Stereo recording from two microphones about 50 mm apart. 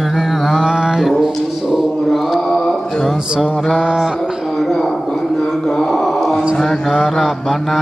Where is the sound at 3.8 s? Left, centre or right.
Centre.